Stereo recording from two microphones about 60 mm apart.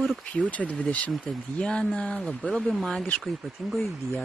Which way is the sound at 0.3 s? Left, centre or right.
Left.